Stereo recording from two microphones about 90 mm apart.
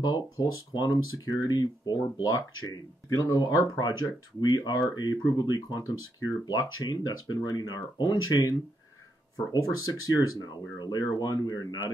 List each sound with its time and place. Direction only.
0.0 s speech: 50° left (ahead or behind)
9.5 s speech: 40° left (ahead or behind)